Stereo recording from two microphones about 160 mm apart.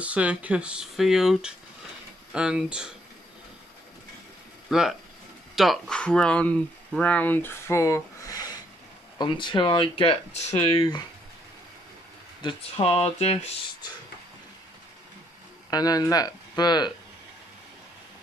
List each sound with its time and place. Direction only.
0.0 s speech: 10° right (ahead or behind)
4.6 s speech: 5° right (ahead or behind); by 11.0 s 35° left (ahead or behind)
12.7 s speech: 40° left (ahead or behind)
15.7 s speech: 25° left (ahead or behind)